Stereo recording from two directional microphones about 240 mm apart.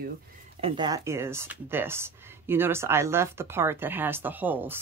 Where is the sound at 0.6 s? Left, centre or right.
Right.